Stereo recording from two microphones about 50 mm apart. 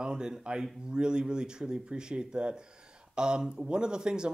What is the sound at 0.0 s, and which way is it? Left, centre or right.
Speech, centre.